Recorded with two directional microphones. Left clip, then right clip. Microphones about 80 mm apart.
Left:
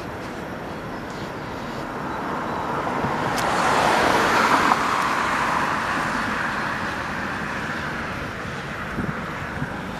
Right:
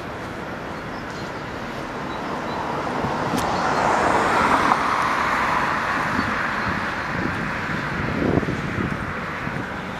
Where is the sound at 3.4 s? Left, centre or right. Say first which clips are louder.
Left 2 dB; left.